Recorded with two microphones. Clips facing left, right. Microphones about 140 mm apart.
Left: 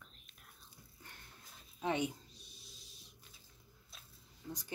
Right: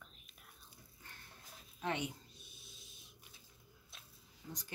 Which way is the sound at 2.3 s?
Centre (ahead or behind).